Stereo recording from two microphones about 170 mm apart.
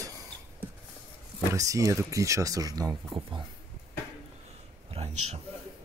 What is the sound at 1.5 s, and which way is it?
Speech, 20° right (ahead or behind).